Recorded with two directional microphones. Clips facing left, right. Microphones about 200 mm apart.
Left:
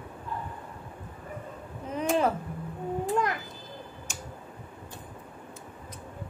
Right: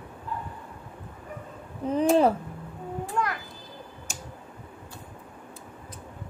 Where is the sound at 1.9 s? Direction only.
30° right (ahead or behind).